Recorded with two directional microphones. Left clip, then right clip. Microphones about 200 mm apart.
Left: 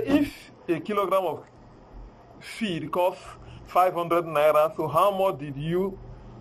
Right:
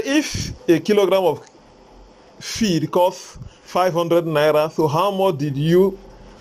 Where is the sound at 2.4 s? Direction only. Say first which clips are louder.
Right 10 dB; 30° right (ahead or behind).